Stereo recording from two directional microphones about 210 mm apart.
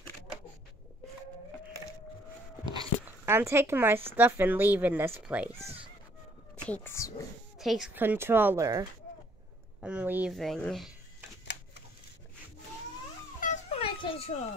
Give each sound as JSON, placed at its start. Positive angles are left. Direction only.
{"t": 2.7, "sound": "speech", "side_deg": -15}
{"t": 6.7, "sound": "speech", "side_deg": 10}
{"t": 7.5, "sound": "speech", "side_deg": 0}
{"t": 13.4, "sound": "a sound", "side_deg": 35}